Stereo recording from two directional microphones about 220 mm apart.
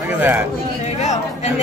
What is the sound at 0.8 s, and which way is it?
Chatter, 30° left (ahead or behind).